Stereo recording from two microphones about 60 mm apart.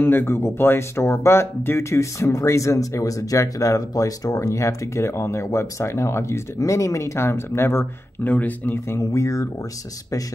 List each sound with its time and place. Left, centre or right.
0.0 s speech: left
1.9 s speech: left
6.6 s speech: left